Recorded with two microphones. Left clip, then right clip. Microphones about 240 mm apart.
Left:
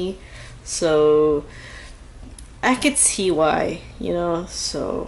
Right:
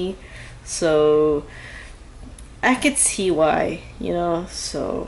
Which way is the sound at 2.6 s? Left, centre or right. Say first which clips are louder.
Even; centre.